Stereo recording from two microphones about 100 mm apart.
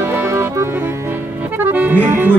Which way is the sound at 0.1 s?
30° right (ahead or behind).